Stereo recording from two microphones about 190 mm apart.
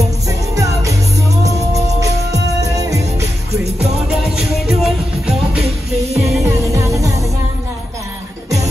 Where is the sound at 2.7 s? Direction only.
15° right (ahead or behind).